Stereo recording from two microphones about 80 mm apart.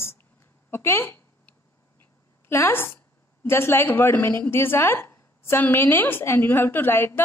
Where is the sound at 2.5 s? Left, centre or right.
Left.